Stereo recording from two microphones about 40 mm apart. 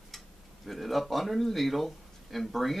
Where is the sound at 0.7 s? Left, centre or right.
Centre.